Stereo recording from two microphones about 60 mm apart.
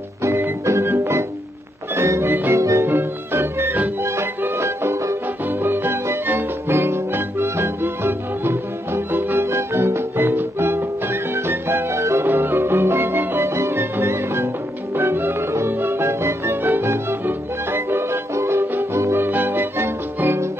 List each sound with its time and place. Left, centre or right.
0.2 s organ: right
0.9 s music: right
2.9 s music: right
11.9 s music: right
12.3 s music: right
19.2 s music: right